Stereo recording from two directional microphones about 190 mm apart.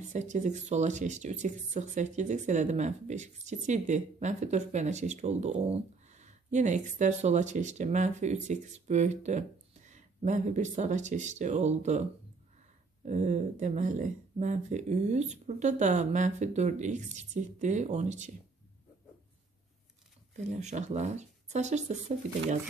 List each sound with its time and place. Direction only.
0.1 s speech: 40° right (ahead or behind)
20.3 s speech: 35° right (ahead or behind)